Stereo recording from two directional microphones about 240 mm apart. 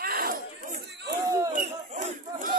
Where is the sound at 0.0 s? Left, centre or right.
Right.